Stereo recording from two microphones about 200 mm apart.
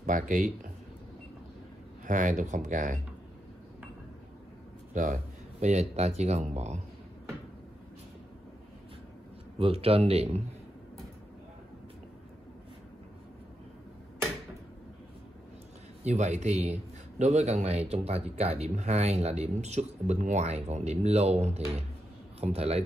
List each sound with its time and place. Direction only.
0.0 s speech: 40° right (ahead or behind)
2.0 s speech: 40° right (ahead or behind)
4.9 s speech: 40° right (ahead or behind)
9.6 s speech: 30° right (ahead or behind)
16.0 s speech: 35° right (ahead or behind)